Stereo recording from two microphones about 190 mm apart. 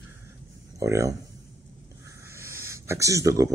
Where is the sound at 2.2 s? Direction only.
15° right (ahead or behind).